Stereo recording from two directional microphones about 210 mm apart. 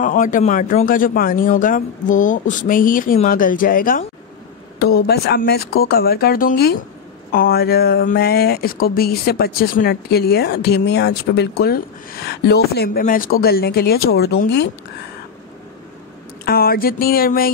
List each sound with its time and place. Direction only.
0.0 s speech: 40° left (ahead or behind)
16.4 s speech: 45° left (ahead or behind)